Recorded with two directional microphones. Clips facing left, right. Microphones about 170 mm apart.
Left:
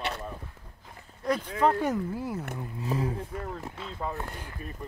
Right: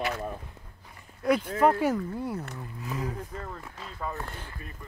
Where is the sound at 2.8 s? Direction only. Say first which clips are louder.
Left 4 dB; 30° left (ahead or behind).